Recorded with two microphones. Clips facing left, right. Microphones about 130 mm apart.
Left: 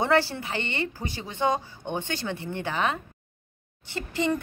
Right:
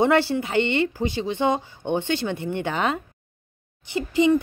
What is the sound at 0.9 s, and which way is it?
A woman's voice, 15° right (ahead or behind).